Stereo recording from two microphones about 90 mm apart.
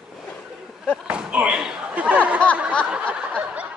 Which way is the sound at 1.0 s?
10° right (ahead or behind).